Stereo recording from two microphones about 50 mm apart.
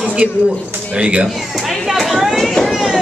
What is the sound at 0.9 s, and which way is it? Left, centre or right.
Speech, right.